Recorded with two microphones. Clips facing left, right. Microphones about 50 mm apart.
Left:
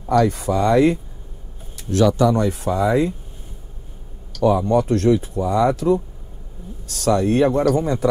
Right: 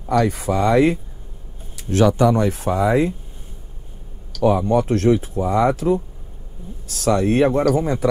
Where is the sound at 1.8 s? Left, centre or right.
Right.